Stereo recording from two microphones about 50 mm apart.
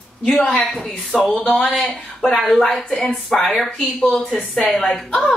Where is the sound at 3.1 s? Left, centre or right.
Centre.